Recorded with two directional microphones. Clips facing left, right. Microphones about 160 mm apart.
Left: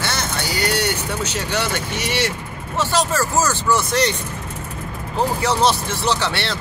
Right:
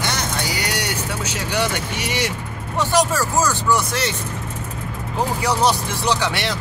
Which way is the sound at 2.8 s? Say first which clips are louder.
Right 1 dB; 15° right (ahead or behind).